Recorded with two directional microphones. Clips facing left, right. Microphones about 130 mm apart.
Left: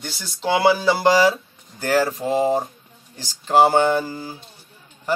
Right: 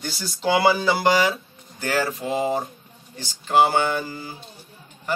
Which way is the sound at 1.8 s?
40° left (ahead or behind).